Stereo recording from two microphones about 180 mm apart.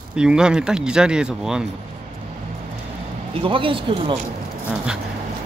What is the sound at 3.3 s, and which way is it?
Speech, 30° right (ahead or behind).